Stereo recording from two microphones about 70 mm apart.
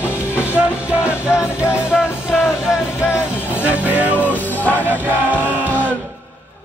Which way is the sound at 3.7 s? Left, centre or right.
Right.